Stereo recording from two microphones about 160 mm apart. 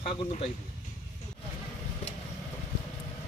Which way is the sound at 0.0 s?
40° left (ahead or behind).